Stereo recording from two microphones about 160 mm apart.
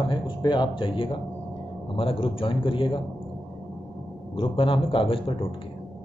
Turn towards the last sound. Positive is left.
turn(degrees=35)  # may be behind; listen again after turning